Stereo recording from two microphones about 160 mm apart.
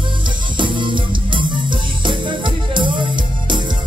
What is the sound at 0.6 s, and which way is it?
Music, 30° right (ahead or behind).